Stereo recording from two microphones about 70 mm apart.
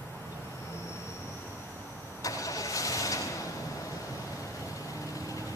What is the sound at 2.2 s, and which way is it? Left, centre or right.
Vehicle, left.